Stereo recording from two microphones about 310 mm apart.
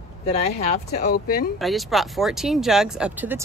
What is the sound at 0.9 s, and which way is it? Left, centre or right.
Speech, left.